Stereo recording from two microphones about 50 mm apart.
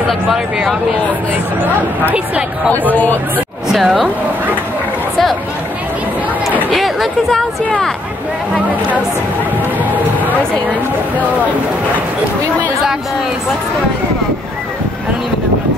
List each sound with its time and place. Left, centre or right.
2.1 s speech: right
2.9 s speech: left
3.7 s speech: centre
6.7 s chatter: centre